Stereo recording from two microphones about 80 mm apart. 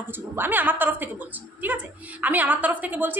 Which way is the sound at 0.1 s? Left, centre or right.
Right.